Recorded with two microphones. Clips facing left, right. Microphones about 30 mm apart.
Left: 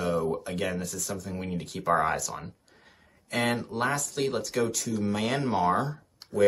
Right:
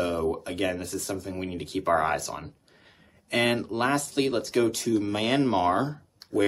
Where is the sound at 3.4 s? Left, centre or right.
Right.